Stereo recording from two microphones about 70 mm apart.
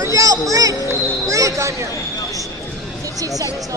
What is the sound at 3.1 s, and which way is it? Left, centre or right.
Speech, right.